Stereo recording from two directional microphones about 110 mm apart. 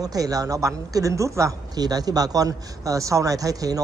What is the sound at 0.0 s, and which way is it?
Speech, 35° right (ahead or behind).